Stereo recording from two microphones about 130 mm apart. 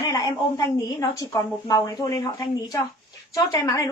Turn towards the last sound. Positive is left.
turn(degrees=25)  # may be behind; listen again after turning